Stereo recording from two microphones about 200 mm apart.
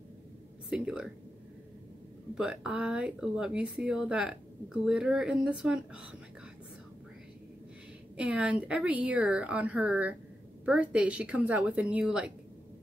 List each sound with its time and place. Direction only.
0.7 s speech: 5° right (ahead or behind)
2.3 s speech: 5° right (ahead or behind)
8.2 s a woman's voice: 5° right (ahead or behind)